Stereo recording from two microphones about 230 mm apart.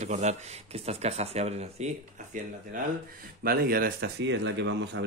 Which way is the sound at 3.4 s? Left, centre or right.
Right.